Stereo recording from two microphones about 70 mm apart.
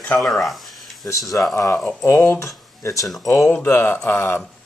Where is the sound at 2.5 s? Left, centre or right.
Left.